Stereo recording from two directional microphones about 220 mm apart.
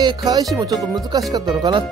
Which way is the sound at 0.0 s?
15° right (ahead or behind).